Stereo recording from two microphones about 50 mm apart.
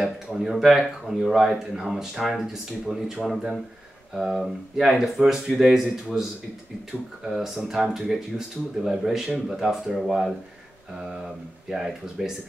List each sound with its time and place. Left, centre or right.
0.0 s speech: centre
7.2 s speech: centre
11.7 s speech: centre